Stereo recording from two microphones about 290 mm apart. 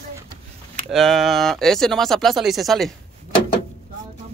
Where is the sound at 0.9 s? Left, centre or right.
Centre.